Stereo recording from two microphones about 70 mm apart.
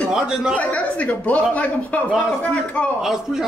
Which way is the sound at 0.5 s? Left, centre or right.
Centre.